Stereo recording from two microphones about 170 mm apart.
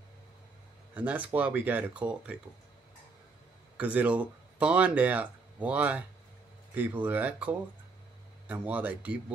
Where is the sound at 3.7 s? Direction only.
5° right (ahead or behind).